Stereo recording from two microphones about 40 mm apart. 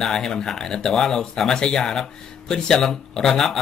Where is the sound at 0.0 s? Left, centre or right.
Centre.